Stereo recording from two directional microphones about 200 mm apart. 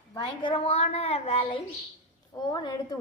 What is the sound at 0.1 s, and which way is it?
A woman's voice, 25° left (ahead or behind).